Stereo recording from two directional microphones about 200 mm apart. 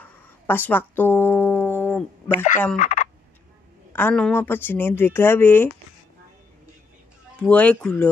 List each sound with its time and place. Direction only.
0.5 s speech: 10° left (ahead or behind)
2.8 s speech: 40° left (ahead or behind)
3.9 s speech: 5° left (ahead or behind)
7.4 s speech: 5° left (ahead or behind)